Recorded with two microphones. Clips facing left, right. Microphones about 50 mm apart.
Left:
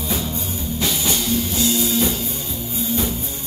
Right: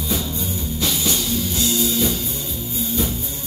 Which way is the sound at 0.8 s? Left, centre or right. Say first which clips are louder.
Even; left.